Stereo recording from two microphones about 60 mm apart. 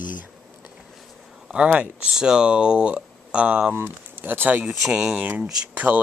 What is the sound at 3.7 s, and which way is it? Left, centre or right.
Speech, right.